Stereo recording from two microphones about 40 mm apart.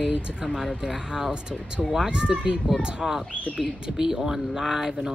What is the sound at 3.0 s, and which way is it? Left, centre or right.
Speech, centre.